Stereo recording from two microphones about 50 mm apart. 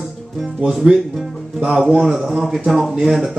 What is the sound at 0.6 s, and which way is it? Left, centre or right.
Speech, centre.